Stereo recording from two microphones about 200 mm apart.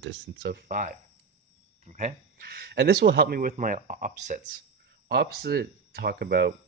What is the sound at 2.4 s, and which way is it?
Speech, 50° right (ahead or behind).